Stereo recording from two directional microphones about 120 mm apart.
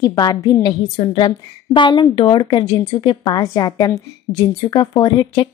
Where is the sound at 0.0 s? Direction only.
35° left (ahead or behind).